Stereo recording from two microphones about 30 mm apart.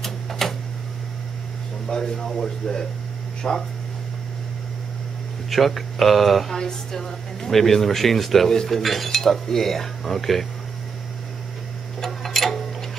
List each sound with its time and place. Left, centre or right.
0.0 s a sound: centre
1.9 s speech: left
2.3 s cutlery: centre
5.5 s speech: centre
6.5 s speech: centre
7.0 s cutlery: centre
12.0 s tick-tock: centre